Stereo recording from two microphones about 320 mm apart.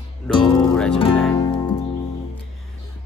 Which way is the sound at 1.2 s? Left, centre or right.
Centre.